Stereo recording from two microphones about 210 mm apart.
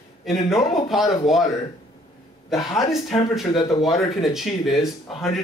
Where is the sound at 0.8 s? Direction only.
Centre (ahead or behind).